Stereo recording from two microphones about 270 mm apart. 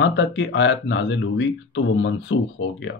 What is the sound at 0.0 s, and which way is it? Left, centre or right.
Speech, left.